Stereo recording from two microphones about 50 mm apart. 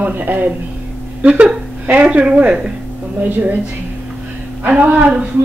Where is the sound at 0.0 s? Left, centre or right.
Right.